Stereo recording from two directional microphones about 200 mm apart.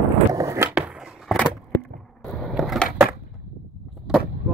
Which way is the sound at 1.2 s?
5° left (ahead or behind).